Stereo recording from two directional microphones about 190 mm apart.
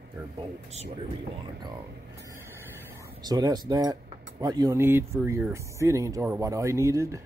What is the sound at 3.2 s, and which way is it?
Speech, 20° right (ahead or behind).